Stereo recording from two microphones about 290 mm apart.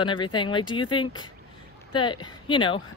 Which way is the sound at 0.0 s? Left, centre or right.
Centre.